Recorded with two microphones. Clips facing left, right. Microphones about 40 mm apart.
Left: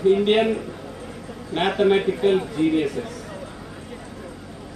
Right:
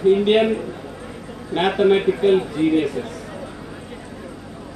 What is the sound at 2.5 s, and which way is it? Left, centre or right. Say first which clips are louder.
Speech: right 2 dB; right.